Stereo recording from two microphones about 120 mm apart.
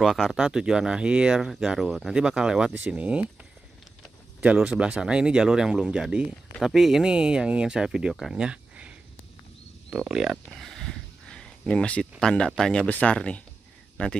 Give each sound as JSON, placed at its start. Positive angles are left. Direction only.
{"t": 0.0, "sound": "speech", "side_deg": 0}
{"t": 4.4, "sound": "a man's voice", "side_deg": -10}